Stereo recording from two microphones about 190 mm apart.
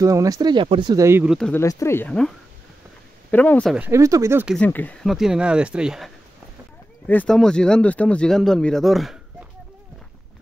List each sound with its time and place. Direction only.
0.0 s speech: 15° right (ahead or behind)
1.3 s speech: 5° left (ahead or behind)
1.6 s speech: 15° left (ahead or behind)
3.7 s speech: 10° right (ahead or behind)
4.6 s speech: 10° left (ahead or behind)